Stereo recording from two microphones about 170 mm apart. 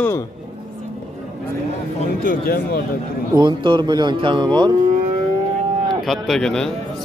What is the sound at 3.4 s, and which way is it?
Speech, 25° right (ahead or behind).